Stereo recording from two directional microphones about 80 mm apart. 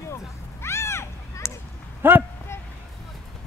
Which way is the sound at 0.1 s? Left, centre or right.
Left.